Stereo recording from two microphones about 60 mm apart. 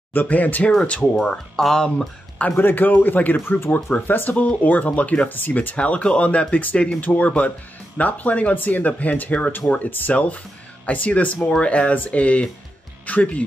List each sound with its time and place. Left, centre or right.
0.1 s speech: left
0.7 s speech: centre
2.5 s a man's voice: left
3.3 s speech: left